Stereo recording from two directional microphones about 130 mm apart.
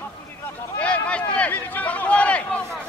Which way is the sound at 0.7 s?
10° left (ahead or behind).